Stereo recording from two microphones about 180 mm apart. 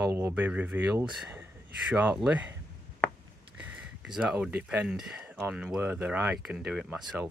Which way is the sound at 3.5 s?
5° right (ahead or behind).